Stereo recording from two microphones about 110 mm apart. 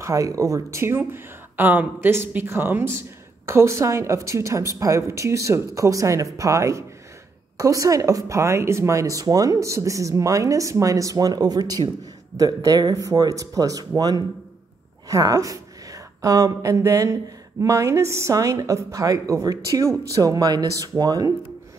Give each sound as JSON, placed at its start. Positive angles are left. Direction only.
{"t": 0.0, "sound": "a woman's voice", "side_deg": -30}